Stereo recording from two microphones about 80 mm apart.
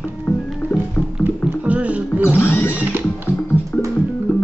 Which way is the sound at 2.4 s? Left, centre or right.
Left.